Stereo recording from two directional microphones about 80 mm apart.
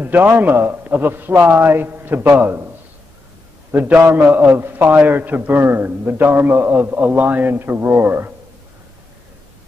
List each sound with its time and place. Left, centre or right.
0.0 s a man's voice: right
3.7 s a man's voice: right